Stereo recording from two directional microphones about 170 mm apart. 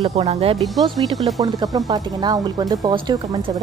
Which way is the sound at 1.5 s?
20° right (ahead or behind).